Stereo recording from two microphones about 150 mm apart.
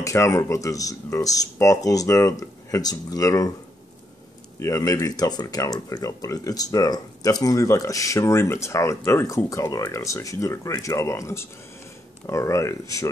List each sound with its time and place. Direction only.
0.0 s speech: 20° left (ahead or behind)
4.6 s speech: 20° left (ahead or behind)